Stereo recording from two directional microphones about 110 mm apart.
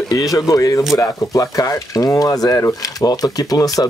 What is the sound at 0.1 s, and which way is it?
Speech, 35° left (ahead or behind).